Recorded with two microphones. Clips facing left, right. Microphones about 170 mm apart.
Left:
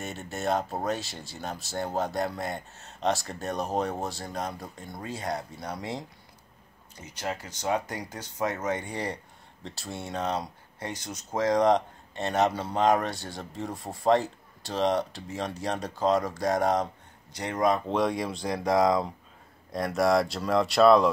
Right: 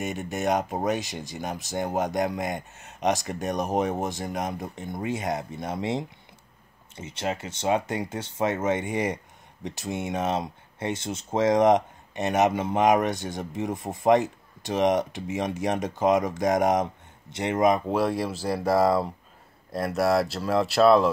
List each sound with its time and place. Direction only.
0.0 s speech: 15° right (ahead or behind)
17.8 s speech: 5° right (ahead or behind)